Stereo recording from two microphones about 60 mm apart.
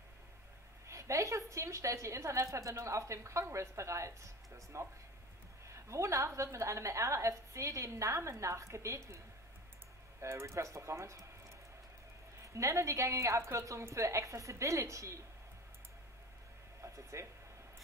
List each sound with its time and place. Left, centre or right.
0.8 s a woman's voice: right
10.4 s a woman's voice: right
12.5 s a woman's voice: right
16.8 s speech: right